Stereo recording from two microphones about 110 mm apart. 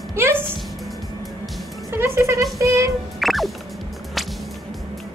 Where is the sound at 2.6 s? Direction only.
30° right (ahead or behind).